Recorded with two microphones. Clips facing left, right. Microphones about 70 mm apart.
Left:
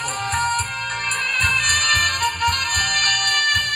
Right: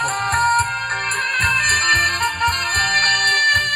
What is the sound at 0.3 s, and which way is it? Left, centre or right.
Music, right.